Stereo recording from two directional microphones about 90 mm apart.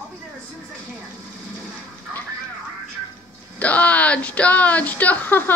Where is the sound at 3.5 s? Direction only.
15° left (ahead or behind).